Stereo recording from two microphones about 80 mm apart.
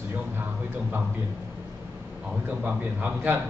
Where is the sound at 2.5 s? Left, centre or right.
Centre.